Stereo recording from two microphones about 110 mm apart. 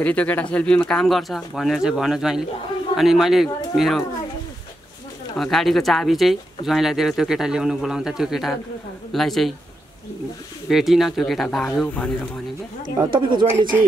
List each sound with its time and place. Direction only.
0.0 s speech: 15° left (ahead or behind)
5.4 s speech: centre (ahead or behind)
10.7 s speech: centre (ahead or behind)
13.1 s speech: 45° right (ahead or behind)